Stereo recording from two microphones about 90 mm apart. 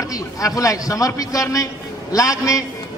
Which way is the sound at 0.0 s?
40° left (ahead or behind).